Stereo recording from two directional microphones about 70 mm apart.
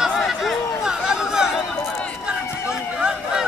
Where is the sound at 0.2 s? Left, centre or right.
Centre.